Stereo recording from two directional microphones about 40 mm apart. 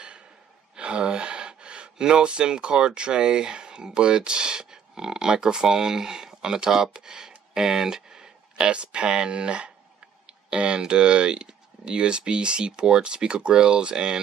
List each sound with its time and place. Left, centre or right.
0.7 s speech: right
8.6 s speech: right